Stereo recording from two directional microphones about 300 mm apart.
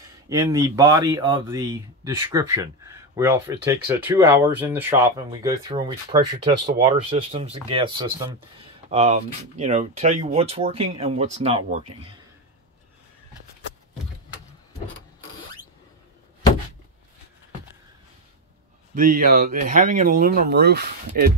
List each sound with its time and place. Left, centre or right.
0.3 s speech: centre
18.9 s speech: right